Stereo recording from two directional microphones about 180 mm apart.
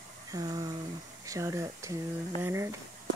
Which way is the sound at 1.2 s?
15° right (ahead or behind).